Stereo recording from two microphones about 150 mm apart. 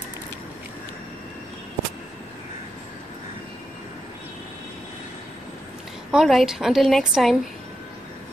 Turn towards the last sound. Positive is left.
turn(degrees=0)  # may be behind; listen again after turning